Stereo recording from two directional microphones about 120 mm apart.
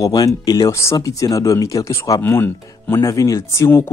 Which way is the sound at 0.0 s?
30° left (ahead or behind).